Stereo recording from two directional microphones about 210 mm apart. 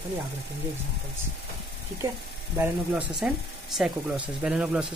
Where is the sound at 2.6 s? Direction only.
5° right (ahead or behind).